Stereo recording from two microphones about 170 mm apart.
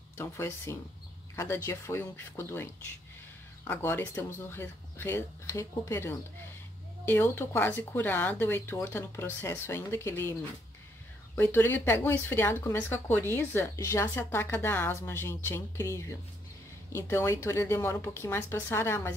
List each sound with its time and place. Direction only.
0.2 s speech: 15° left (ahead or behind)